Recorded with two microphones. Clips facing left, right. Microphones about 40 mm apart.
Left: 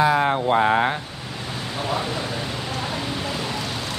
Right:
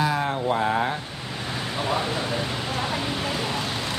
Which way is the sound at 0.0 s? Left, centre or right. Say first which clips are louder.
Left 5 dB; left.